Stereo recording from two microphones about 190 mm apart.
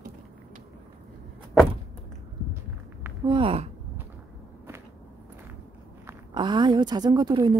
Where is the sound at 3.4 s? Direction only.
30° right (ahead or behind).